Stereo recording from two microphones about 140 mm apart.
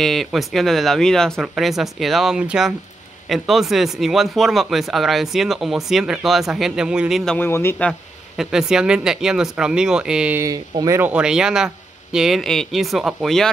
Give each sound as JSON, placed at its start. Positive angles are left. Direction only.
{"t": 0.0, "sound": "speech", "side_deg": 0}
{"t": 7.3, "sound": "a man's voice", "side_deg": 15}
{"t": 8.4, "sound": "speech", "side_deg": -5}
{"t": 10.4, "sound": "speech", "side_deg": -25}